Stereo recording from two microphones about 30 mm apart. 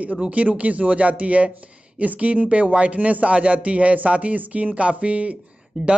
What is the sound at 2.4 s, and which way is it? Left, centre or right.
A man's voice, right.